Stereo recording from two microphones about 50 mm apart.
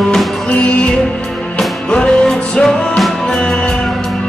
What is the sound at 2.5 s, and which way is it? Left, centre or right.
Music, centre.